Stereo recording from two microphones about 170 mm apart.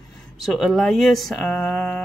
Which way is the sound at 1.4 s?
10° left (ahead or behind).